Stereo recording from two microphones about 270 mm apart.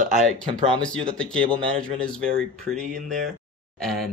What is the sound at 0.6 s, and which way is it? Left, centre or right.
Speech, centre.